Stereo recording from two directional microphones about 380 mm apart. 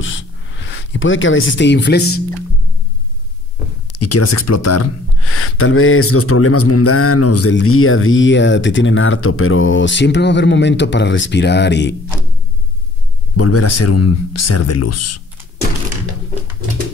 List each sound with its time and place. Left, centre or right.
0.0 s a sound: left
3.9 s speech: left
13.4 s speech: left